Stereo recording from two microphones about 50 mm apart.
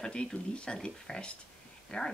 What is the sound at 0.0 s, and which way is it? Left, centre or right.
A woman's voice, centre.